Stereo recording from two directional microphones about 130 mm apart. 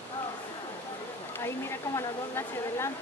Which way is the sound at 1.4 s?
20° left (ahead or behind).